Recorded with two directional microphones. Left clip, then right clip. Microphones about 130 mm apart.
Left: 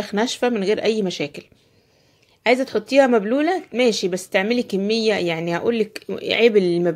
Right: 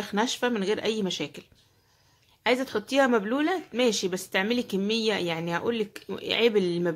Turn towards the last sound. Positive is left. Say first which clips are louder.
# left 8 dB
turn(degrees=30)  # may be behind; listen again after turning